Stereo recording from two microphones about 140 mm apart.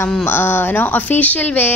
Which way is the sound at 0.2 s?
15° left (ahead or behind).